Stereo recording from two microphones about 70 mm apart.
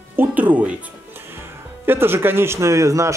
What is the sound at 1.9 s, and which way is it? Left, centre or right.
Speech, right.